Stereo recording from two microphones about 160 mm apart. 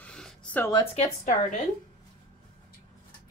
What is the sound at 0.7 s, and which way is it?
Speech, 40° left (ahead or behind).